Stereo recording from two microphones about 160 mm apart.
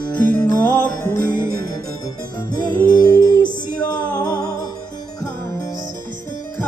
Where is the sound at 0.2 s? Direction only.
10° left (ahead or behind).